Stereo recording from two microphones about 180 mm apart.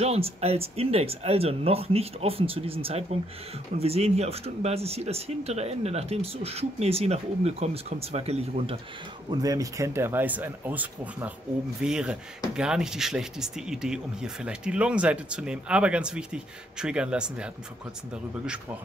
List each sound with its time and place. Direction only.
0.0 s speech: 35° right (ahead or behind)
9.3 s speech: 20° right (ahead or behind)